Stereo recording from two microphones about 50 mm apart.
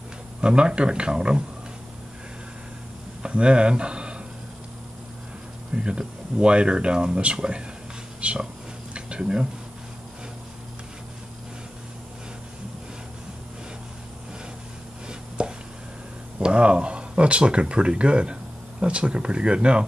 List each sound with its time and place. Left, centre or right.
0.4 s speech: centre
3.2 s speech: right
5.8 s speech: centre
8.9 s a sound: centre
15.0 s a sound: centre
16.3 s speech: right